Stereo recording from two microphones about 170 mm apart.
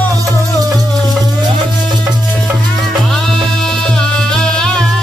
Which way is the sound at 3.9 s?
5° left (ahead or behind).